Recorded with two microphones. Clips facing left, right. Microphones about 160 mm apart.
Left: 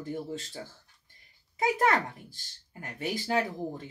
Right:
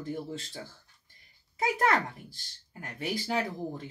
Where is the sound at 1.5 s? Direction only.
20° left (ahead or behind).